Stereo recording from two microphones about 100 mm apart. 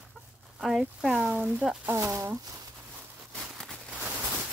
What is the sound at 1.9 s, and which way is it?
Speech, 30° right (ahead or behind).